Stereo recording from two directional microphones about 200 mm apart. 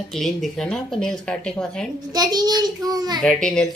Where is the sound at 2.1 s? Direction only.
20° right (ahead or behind).